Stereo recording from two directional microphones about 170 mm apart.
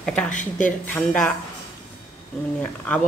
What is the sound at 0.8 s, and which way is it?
Speech, 5° left (ahead or behind).